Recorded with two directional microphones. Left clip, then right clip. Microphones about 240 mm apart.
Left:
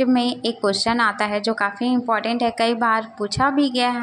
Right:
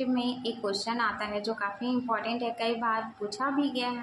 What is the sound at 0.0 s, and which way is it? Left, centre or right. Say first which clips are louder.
A woman's voice: left 11 dB; left.